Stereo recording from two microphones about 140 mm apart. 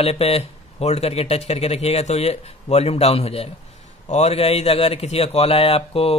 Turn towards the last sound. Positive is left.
turn(degrees=45)  # may be behind; listen again after turning